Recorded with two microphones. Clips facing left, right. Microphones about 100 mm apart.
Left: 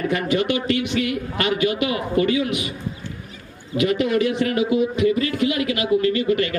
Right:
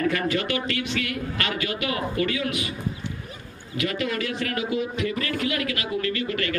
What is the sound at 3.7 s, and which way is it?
A man's voice, 20° left (ahead or behind).